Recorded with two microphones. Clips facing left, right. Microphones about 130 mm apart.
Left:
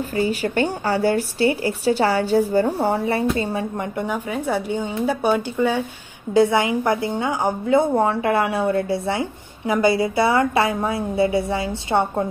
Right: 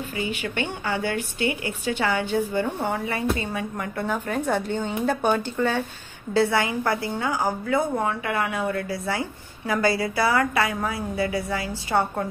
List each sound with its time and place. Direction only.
0.1 s a woman's voice: 40° left (ahead or behind)